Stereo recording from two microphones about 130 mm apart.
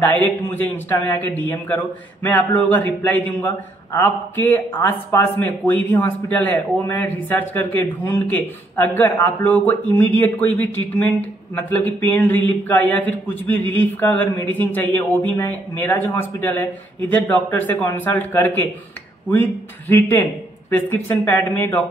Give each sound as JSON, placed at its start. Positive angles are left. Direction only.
{"t": 0.0, "sound": "a man's voice", "side_deg": 15}